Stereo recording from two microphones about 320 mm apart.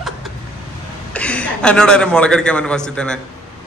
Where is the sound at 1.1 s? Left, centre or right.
Centre.